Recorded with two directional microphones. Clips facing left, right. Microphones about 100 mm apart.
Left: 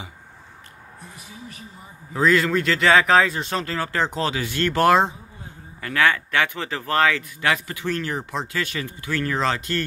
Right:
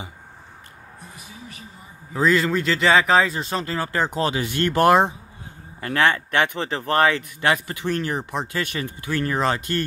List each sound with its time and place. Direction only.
2.1 s speech: centre (ahead or behind)
5.8 s speech: 30° right (ahead or behind)